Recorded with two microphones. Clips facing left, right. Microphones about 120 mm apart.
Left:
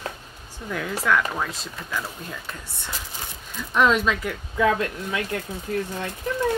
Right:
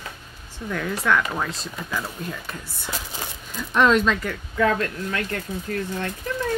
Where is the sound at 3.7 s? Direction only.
5° left (ahead or behind).